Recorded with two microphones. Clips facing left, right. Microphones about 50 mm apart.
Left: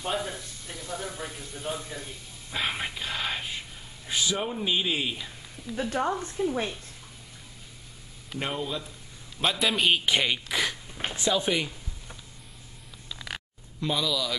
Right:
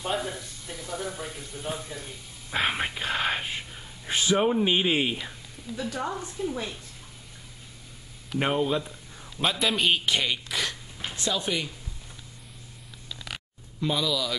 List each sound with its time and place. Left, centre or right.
0.0 s speech: centre
2.5 s speech: right
5.8 s speech: left
8.4 s speech: right
9.4 s speech: centre
13.1 s a sound: centre
13.7 s speech: centre